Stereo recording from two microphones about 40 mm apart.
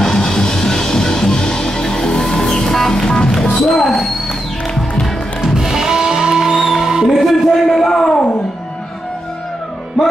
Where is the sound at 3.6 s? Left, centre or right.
Centre.